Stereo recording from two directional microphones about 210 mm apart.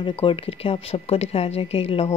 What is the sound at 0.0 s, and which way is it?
A woman's voice, 25° left (ahead or behind).